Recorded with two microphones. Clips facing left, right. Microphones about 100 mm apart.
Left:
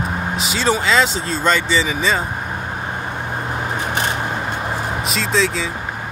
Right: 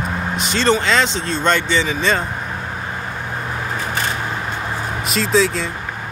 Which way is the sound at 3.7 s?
20° left (ahead or behind).